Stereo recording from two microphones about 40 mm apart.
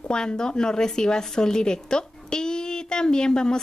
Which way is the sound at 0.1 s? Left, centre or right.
Centre.